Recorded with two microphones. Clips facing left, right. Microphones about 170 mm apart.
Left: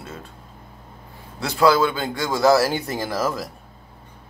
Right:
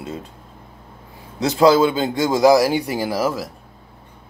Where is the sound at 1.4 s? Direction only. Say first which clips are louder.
Right 4 dB; 20° right (ahead or behind).